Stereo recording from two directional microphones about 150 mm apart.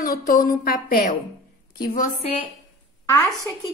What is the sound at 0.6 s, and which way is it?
Speech, 80° left.